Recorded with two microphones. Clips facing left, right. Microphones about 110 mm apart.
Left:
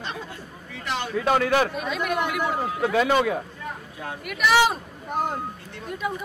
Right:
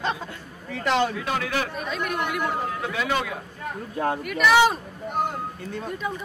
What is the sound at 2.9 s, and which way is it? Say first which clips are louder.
Speech: left 8 dB; 35° left (ahead or behind).